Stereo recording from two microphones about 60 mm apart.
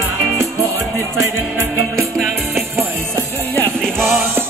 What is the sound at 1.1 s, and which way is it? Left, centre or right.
Music, right.